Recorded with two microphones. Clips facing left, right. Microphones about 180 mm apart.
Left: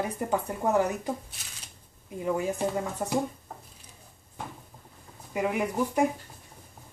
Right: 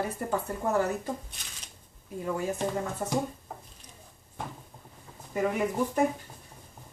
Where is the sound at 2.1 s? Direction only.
15° left (ahead or behind).